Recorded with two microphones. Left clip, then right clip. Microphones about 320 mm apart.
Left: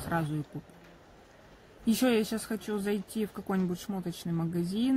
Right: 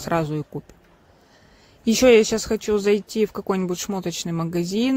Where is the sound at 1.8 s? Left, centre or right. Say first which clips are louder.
Right 14 dB; right.